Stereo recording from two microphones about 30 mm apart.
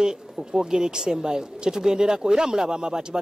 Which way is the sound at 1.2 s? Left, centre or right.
Right.